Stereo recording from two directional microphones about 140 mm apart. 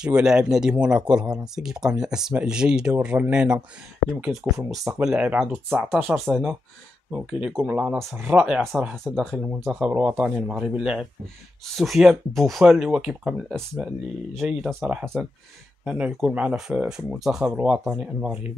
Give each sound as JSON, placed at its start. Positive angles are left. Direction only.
{"t": 0.0, "sound": "speech", "side_deg": -5}